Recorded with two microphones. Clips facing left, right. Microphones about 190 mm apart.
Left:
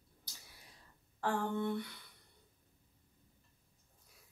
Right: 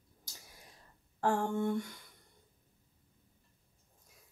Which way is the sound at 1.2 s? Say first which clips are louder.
Right 4 dB; 45° right (ahead or behind).